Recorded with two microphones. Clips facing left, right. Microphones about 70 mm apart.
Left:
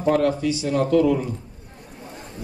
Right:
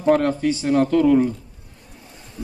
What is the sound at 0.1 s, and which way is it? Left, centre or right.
Speech, right.